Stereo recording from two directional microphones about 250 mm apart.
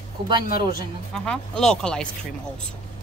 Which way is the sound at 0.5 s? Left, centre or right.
Left.